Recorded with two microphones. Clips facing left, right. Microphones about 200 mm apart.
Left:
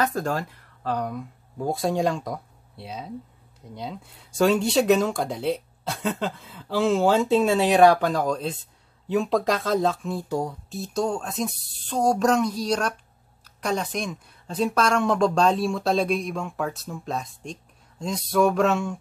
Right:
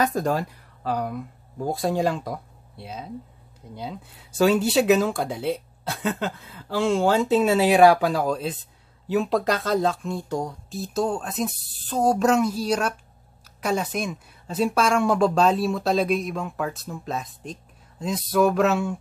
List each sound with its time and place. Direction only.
0.0 s speech: 15° right (ahead or behind)